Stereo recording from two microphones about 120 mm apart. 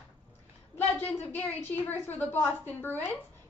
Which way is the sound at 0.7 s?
15° left (ahead or behind).